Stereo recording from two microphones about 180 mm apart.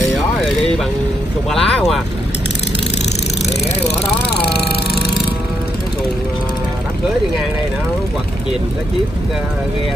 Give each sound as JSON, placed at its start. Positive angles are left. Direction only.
{"t": 1.5, "sound": "speech", "side_deg": 0}